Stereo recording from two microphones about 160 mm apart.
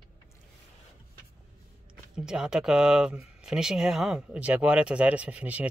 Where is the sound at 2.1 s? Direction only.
5° right (ahead or behind).